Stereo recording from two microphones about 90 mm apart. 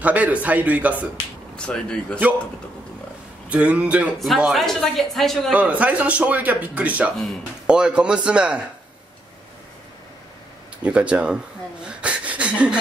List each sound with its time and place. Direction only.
0.0 s a man's voice: 15° right (ahead or behind)
1.7 s speech: 10° left (ahead or behind)
3.4 s a man's voice: 15° right (ahead or behind)
4.2 s speech: centre (ahead or behind)
5.5 s a man's voice: 15° right (ahead or behind)
10.8 s a man's voice: 15° right (ahead or behind)